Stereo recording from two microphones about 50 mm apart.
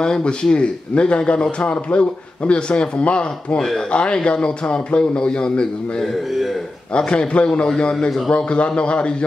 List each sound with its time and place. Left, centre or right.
0.0 s a man's voice: centre